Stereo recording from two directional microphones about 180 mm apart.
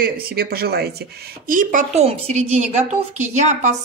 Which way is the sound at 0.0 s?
55° right (ahead or behind).